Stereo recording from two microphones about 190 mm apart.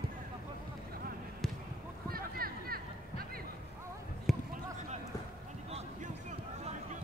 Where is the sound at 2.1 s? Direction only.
50° right (ahead or behind).